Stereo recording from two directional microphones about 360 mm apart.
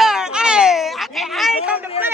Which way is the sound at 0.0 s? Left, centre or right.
Centre.